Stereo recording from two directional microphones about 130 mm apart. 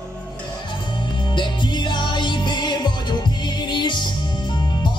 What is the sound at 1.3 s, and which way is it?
Music, 35° left (ahead or behind).